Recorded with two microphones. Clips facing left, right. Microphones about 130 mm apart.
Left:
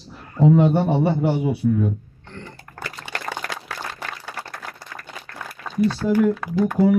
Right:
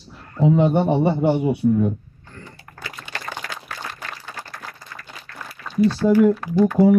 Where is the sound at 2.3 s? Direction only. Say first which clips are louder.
Left 3 dB; 65° left (ahead or behind).